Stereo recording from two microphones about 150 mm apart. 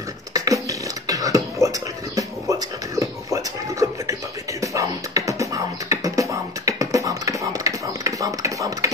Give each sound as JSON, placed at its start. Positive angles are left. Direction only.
{"t": 0.3, "sound": "beatboxing", "side_deg": -25}
{"t": 3.0, "sound": "music", "side_deg": -20}